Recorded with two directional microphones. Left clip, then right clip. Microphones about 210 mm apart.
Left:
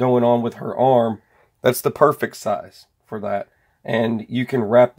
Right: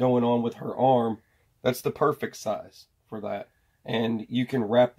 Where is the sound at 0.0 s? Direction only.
45° left (ahead or behind).